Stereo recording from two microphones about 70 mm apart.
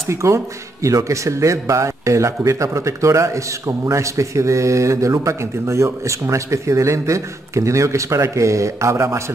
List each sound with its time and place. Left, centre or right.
0.1 s a man's voice: right